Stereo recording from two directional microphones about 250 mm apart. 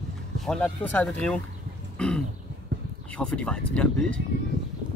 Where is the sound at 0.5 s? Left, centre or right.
Centre.